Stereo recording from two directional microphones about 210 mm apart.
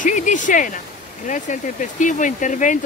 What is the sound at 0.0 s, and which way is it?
Speech, 35° left (ahead or behind).